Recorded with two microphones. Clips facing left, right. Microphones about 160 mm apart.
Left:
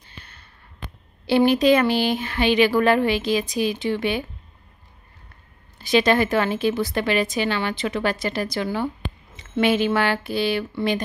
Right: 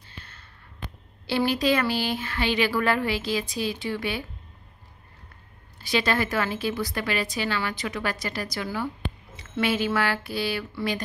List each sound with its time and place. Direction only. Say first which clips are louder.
0.0 s a sound: left 1 dB; 15° left (ahead or behind)
1.2 s a woman's voice: left 7 dB; 20° left (ahead or behind)
5.8 s a woman's voice: left 7 dB; 20° left (ahead or behind)